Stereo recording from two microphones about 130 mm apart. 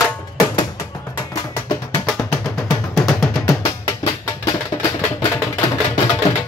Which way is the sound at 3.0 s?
Centre (ahead or behind).